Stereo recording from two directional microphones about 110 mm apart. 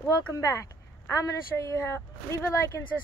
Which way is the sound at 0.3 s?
30° left (ahead or behind).